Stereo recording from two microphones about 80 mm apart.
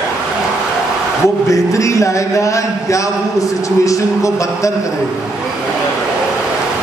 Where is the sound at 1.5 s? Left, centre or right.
Left.